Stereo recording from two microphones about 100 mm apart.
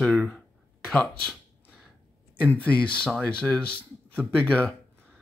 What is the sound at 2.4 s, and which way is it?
Speech, 15° left (ahead or behind).